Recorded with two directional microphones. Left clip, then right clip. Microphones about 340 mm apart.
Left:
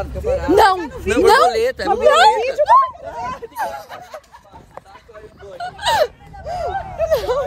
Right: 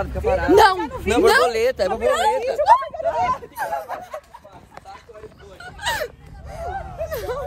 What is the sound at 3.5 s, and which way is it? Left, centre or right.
Speech, centre.